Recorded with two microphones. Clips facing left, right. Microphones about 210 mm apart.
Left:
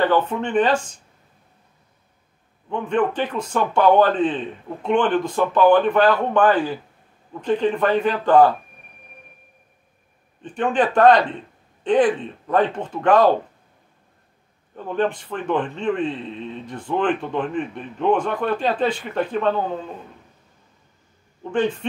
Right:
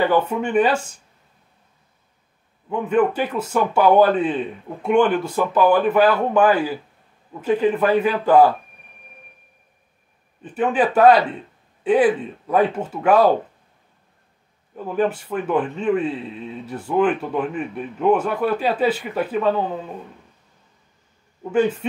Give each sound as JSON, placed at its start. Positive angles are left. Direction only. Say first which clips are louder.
{"t": 0.0, "sound": "speech", "louder": "right 1 dB", "side_deg": -10}
{"t": 2.7, "sound": "speech", "louder": "right 3 dB", "side_deg": -5}
{"t": 10.4, "sound": "speech", "louder": "right 1 dB", "side_deg": -5}
{"t": 14.8, "sound": "speech", "louder": "right 1 dB", "side_deg": -5}
{"t": 21.5, "sound": "speech", "louder": "right 3 dB", "side_deg": -5}